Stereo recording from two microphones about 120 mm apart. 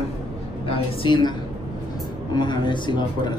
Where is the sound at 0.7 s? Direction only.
45° left (ahead or behind).